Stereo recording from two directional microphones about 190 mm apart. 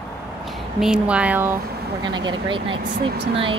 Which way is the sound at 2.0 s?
25° right (ahead or behind).